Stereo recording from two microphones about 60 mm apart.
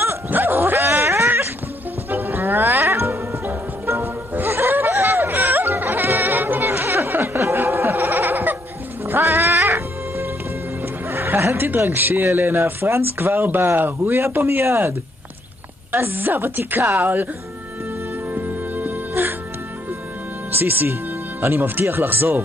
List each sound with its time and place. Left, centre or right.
0.0 s dog: right
2.0 s music: right
7.5 s goat: right
9.0 s music: right
11.1 s neigh: right
11.9 s speech: right
18.3 s music: right
20.5 s speech: right
21.6 s speech: right